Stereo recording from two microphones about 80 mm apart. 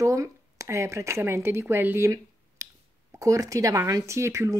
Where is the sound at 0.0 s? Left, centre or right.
Right.